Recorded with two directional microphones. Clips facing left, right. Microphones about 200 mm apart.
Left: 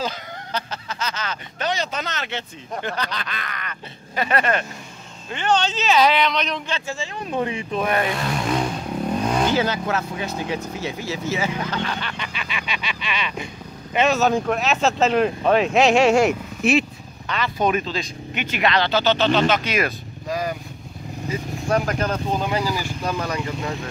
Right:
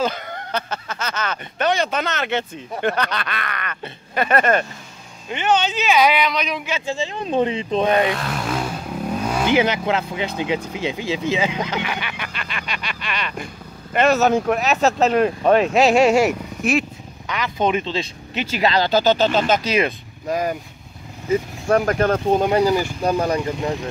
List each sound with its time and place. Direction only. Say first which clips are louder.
0.0 s speech: right 5 dB; 55° right (ahead or behind)
5.3 s speech: right 2 dB; 20° right (ahead or behind)
6.9 s speech: right 8 dB; 25° right (ahead or behind)
8.1 s vehicle: left 1 dB; centre (ahead or behind)
9.5 s speech: right 3 dB; 20° right (ahead or behind)
12.4 s speech: even; 5° left (ahead or behind)
17.3 s speech: right 1 dB; 15° right (ahead or behind); by 20.5 s 45° right (ahead or behind)
21.6 s speech: right 4 dB; 50° right (ahead or behind)
23.0 s speech: right 5 dB; 35° right (ahead or behind)